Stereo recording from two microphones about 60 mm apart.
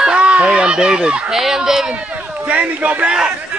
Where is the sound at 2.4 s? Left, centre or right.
Right.